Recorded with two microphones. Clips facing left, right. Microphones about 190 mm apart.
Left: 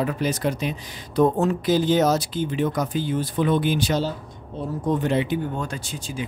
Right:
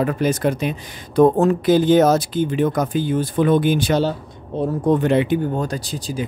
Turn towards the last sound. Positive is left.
turn(degrees=-35)  # may be behind; listen again after turning